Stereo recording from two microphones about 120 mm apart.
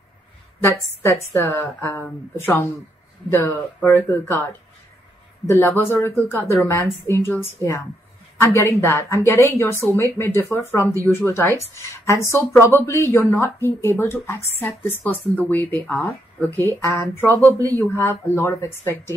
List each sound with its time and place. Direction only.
1.0 s a woman's voice: 25° left (ahead or behind)